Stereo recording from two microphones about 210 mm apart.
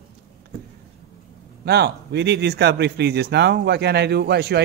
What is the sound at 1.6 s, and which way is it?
Speech, 55° right (ahead or behind).